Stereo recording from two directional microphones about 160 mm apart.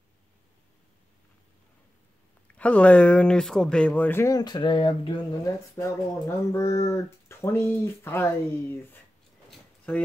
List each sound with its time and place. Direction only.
2.4 s speech: 10° left (ahead or behind); by 5.1 s 35° left (ahead or behind)
5.4 s speech: 15° left (ahead or behind)
9.5 s a sound: 5° left (ahead or behind)